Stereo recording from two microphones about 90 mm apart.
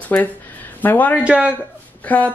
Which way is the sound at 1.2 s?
15° right (ahead or behind).